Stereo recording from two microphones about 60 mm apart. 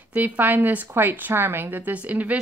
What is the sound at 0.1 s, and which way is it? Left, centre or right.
A woman's voice, right.